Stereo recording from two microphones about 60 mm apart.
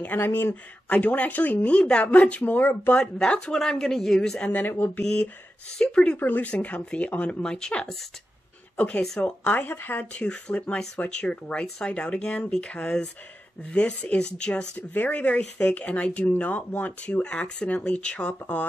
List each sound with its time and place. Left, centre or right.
0.0 s speech: left
0.8 s speech: left
2.9 s speech: centre
4.5 s speech: left
4.9 s speech: centre
6.1 s speech: left
6.5 s speech: left
10.1 s speech: centre
14.8 s speech: left